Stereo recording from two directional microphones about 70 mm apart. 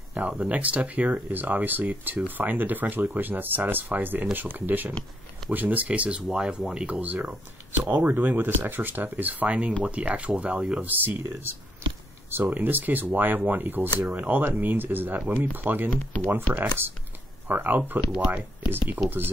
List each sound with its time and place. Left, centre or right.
0.3 s speech: centre
11.0 s speech: right
15.9 s speech: left
16.5 s speech: right